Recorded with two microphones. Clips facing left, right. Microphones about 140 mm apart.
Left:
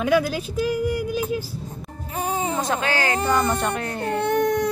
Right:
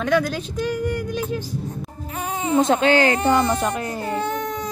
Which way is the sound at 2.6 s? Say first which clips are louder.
Right 7 dB; 25° right (ahead or behind).